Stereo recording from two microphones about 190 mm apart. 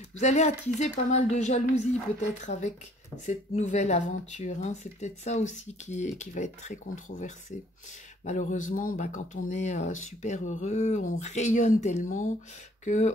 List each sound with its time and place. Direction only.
0.2 s speech: 35° left (ahead or behind)